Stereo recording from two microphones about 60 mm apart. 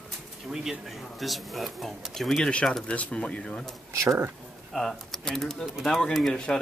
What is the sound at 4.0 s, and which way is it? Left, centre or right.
Speech, right.